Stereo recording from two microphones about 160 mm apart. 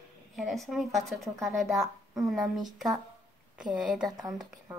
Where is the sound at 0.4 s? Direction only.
Centre (ahead or behind).